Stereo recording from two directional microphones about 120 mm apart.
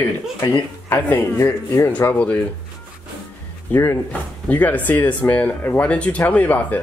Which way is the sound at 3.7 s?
20° left (ahead or behind).